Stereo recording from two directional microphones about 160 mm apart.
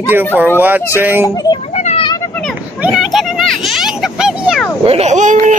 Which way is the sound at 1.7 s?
45° left (ahead or behind).